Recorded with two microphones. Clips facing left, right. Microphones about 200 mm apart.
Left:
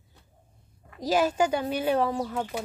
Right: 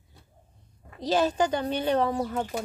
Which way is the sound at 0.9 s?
10° left (ahead or behind).